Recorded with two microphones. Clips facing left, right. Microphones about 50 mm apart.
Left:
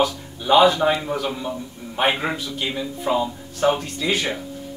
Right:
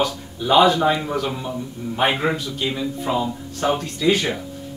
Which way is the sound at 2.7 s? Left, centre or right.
Centre.